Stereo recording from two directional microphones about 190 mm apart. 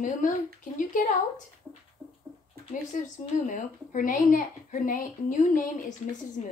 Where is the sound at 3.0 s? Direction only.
40° left (ahead or behind).